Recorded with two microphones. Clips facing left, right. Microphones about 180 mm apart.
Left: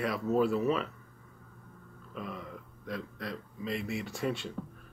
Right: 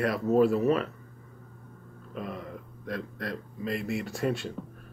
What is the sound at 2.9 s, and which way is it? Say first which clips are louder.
Speech: right 4 dB; 60° right (ahead or behind).